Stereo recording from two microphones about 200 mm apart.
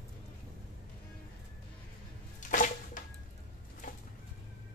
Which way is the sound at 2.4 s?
40° left (ahead or behind).